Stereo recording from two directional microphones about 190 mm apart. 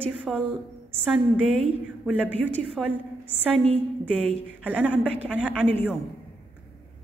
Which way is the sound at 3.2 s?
10° left (ahead or behind).